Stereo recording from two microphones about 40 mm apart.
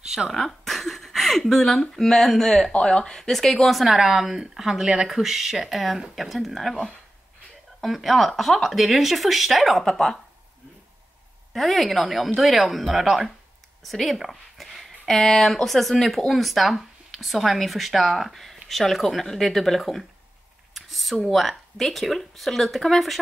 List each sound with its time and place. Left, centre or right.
0.5 s a sound: centre
1.5 s speech: centre
3.8 s a woman's voice: centre
9.8 s speech: centre
11.5 s speech: centre
13.8 s a sound: centre
15.1 s speech: centre